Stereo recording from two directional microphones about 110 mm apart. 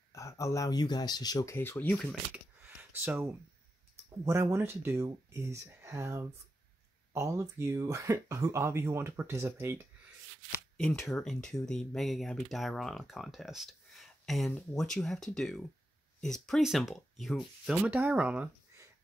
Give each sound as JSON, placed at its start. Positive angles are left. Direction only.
{"t": 0.1, "sound": "speech", "side_deg": 30}
{"t": 2.3, "sound": "computer keyboard", "side_deg": -15}
{"t": 4.1, "sound": "speech", "side_deg": -25}
{"t": 11.1, "sound": "speech", "side_deg": 5}
{"t": 17.8, "sound": "speech", "side_deg": -15}